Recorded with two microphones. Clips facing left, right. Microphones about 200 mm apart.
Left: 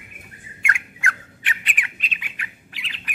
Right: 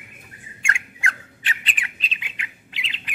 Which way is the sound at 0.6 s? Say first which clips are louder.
Left 1 dB; 25° right (ahead or behind).